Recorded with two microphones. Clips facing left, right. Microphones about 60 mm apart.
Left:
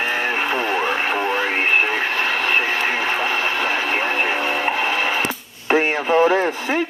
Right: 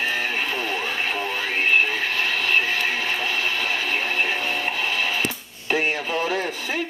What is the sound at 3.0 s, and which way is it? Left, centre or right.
Radio, left.